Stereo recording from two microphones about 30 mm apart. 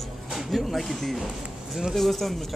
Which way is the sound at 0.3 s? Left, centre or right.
Centre.